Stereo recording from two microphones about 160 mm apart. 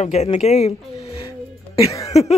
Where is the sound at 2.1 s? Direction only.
40° left (ahead or behind).